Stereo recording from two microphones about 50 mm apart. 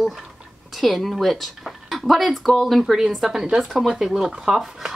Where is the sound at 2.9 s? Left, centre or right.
Centre.